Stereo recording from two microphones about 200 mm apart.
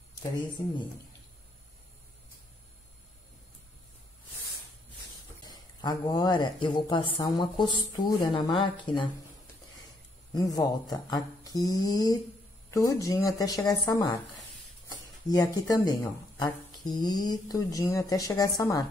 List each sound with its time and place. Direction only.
5.5 s speech: 20° left (ahead or behind)
10.3 s a woman's voice: 20° left (ahead or behind)
14.9 s a sound: 20° left (ahead or behind)
15.7 s a woman's voice: 20° left (ahead or behind)